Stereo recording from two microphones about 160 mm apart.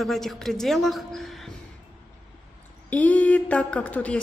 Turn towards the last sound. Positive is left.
turn(degrees=10)  # may be behind; listen again after turning